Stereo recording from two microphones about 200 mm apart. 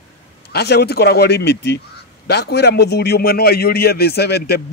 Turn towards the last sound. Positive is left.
turn(degrees=55)  # may be behind; listen again after turning